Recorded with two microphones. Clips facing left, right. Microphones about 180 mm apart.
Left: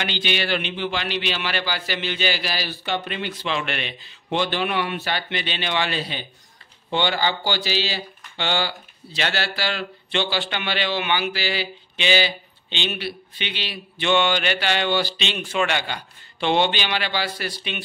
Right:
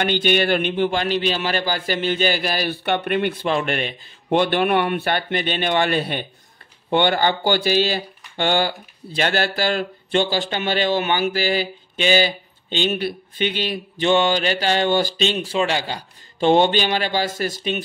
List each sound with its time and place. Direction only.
0.0 s speech: 50° right (ahead or behind)